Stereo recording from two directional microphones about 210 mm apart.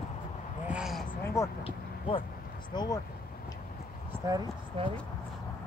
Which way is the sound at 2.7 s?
20° left (ahead or behind).